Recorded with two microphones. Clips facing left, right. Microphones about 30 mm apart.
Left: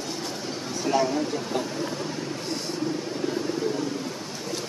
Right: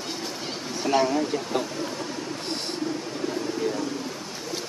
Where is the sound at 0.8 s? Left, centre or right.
Centre.